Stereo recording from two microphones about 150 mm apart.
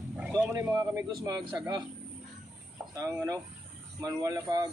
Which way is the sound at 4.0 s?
20° right (ahead or behind).